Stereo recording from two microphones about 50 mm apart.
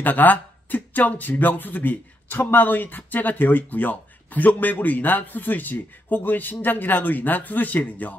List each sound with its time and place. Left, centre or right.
0.0 s speech: left